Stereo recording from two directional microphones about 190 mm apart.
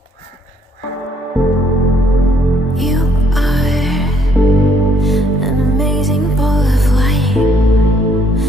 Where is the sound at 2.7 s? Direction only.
Centre (ahead or behind).